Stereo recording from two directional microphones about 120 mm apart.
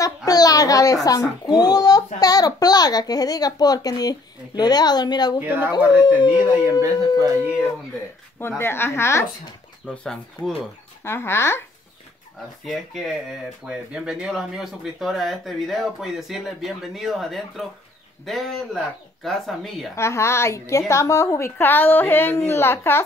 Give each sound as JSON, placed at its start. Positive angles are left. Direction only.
{"t": 0.0, "sound": "a woman's voice", "side_deg": 30}
{"t": 5.4, "sound": "speech", "side_deg": -15}
{"t": 5.9, "sound": "a child's voice", "side_deg": 35}
{"t": 6.6, "sound": "speech", "side_deg": -25}
{"t": 8.4, "sound": "a woman's voice", "side_deg": 20}
{"t": 9.8, "sound": "speech", "side_deg": 5}
{"t": 11.1, "sound": "a woman's voice", "side_deg": 20}
{"t": 13.7, "sound": "speech", "side_deg": -5}
{"t": 20.0, "sound": "a woman's voice", "side_deg": 25}